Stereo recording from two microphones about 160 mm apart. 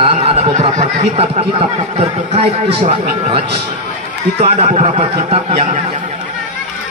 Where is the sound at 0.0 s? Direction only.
40° right (ahead or behind).